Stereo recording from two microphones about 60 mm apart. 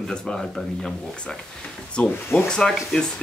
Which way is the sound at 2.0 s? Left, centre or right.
Left.